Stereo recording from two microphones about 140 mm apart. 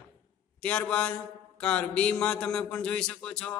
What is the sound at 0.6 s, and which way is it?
Mantra, 10° left (ahead or behind).